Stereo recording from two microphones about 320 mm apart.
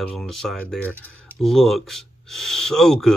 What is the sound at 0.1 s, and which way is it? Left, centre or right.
Speech, centre.